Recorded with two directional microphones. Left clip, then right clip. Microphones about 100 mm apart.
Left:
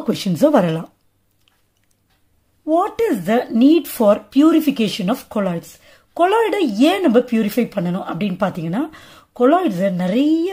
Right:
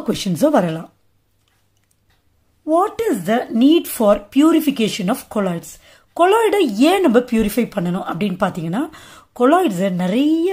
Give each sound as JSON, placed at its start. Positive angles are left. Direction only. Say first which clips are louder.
{"t": 0.0, "sound": "speech", "louder": "left 1 dB", "side_deg": 10}
{"t": 0.6, "sound": "speech", "louder": "left 1 dB", "side_deg": 35}
{"t": 2.6, "sound": "speech", "louder": "even", "side_deg": 0}